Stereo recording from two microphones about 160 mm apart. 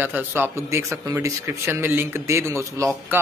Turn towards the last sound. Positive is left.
turn(degrees=-15)  # may be behind; listen again after turning